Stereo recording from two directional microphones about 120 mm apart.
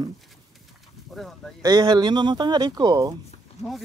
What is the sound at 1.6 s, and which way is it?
Speech, 40° right (ahead or behind).